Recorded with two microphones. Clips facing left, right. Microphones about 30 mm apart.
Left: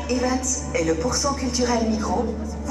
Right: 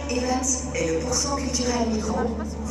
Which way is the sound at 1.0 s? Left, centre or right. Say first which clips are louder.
Left 3 dB; centre.